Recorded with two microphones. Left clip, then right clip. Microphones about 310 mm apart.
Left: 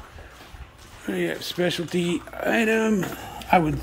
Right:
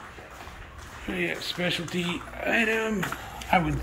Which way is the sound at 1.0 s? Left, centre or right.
Left.